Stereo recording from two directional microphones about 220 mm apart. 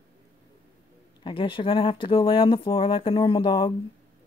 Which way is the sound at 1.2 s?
20° left (ahead or behind).